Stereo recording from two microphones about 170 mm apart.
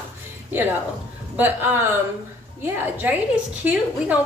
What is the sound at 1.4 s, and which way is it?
Speech, 10° right (ahead or behind).